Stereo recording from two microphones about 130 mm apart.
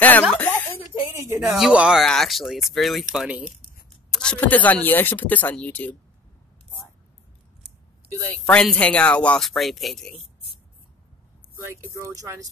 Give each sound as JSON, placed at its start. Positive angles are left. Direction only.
{"t": 0.3, "sound": "a sound", "side_deg": 10}
{"t": 0.7, "sound": "a sound", "side_deg": -20}
{"t": 1.5, "sound": "speech", "side_deg": -5}
{"t": 4.1, "sound": "speech", "side_deg": 5}
{"t": 8.5, "sound": "speech", "side_deg": 10}
{"t": 12.0, "sound": "speech", "side_deg": -25}